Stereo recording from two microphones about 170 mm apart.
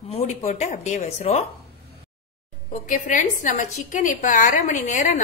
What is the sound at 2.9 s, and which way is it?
A woman's voice, 50° left (ahead or behind).